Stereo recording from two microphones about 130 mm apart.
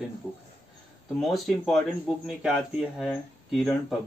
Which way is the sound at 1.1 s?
Centre (ahead or behind).